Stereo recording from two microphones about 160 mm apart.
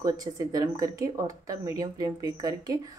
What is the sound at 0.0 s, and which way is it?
A woman's voice, 25° right (ahead or behind).